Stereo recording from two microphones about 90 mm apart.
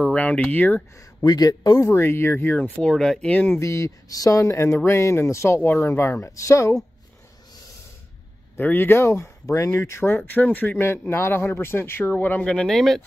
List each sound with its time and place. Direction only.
0.0 s speech: 15° left (ahead or behind)
1.2 s a man's voice: 45° left (ahead or behind)
1.9 s speech: 25° left (ahead or behind)
2.8 s speech: 5° left (ahead or behind)
3.5 s speech: 30° left (ahead or behind)
8.5 s speech: 20° left (ahead or behind)
12.4 s speech: 5° left (ahead or behind)